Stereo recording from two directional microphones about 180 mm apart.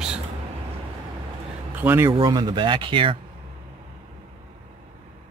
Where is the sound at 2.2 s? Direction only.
25° right (ahead or behind).